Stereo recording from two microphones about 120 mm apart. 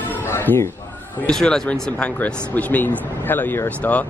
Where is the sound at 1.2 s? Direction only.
5° left (ahead or behind).